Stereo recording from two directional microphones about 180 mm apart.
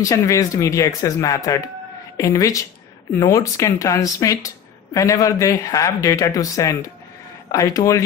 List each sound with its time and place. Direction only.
0.0 s speech: 20° left (ahead or behind)